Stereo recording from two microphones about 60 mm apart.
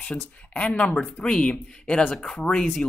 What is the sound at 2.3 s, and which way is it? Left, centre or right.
Speech, centre.